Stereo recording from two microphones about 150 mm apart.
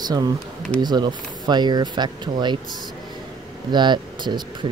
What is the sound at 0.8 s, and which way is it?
Speech, 30° right (ahead or behind).